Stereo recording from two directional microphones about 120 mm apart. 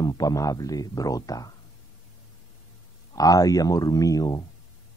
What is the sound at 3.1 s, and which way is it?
Speech, 30° left (ahead or behind).